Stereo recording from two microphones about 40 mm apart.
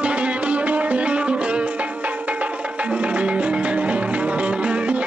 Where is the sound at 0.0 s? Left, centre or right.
Right.